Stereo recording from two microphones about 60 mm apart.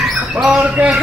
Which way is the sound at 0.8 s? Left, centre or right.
Right.